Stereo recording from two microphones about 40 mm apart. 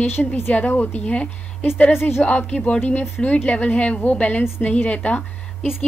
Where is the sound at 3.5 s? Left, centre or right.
Left.